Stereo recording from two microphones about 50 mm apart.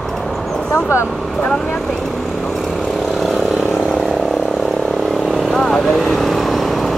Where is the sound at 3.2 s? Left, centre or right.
Centre.